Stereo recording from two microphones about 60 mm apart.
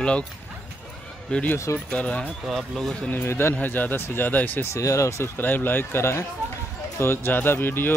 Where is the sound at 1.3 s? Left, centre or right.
Centre.